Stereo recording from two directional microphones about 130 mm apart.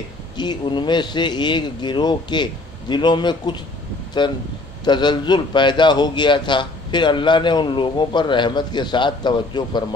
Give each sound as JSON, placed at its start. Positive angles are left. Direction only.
{"t": 0.4, "sound": "a man's voice", "side_deg": 35}